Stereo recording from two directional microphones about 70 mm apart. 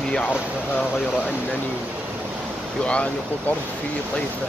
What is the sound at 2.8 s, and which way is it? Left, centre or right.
Speech, centre.